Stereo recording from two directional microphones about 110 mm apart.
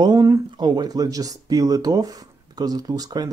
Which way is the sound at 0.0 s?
40° right (ahead or behind).